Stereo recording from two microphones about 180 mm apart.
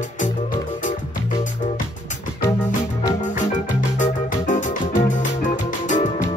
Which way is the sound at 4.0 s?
45° left (ahead or behind).